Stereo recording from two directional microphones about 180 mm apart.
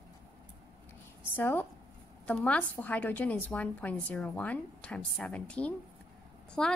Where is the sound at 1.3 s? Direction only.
10° left (ahead or behind).